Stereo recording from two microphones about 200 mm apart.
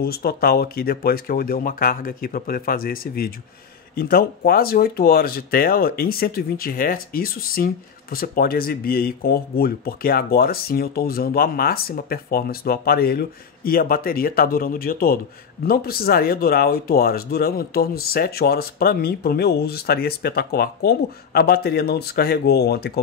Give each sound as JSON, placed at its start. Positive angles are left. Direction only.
{"t": 0.0, "sound": "speech", "side_deg": 50}